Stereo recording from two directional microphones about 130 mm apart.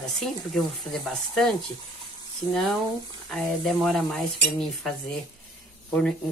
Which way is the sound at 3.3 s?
Centre (ahead or behind).